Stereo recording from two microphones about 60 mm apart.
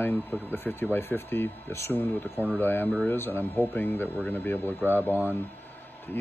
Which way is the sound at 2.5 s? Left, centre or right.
Left.